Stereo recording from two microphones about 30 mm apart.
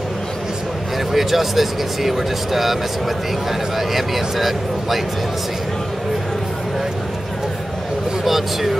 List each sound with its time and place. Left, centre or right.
1.1 s speech: centre
8.2 s speech: centre